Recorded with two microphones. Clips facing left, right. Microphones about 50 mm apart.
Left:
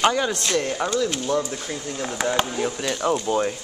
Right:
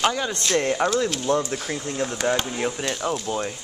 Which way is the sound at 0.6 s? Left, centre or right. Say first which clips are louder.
Right 4 dB; right.